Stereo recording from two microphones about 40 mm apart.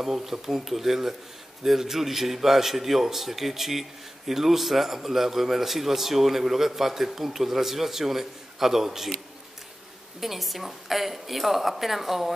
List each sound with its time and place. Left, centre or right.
0.0 s a man's voice: centre
10.2 s a man's voice: centre